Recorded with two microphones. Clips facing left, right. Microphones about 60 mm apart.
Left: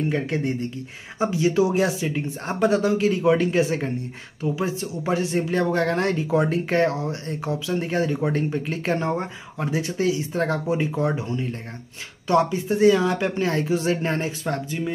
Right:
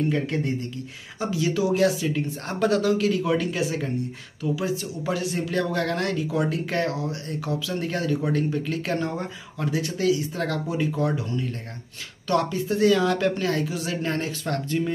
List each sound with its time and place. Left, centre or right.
0.1 s speech: left